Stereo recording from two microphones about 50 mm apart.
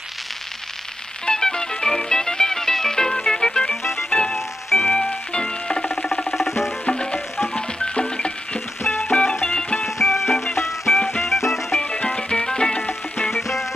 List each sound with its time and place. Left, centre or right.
1.2 s music: centre
4.4 s music: centre
4.9 s music: centre
6.2 s music: centre
6.9 s music: centre
9.8 s music: centre
12.2 s music: centre
13.3 s music: centre